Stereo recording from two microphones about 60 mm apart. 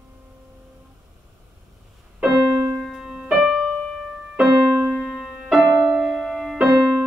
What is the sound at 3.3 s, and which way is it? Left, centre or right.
Music, centre.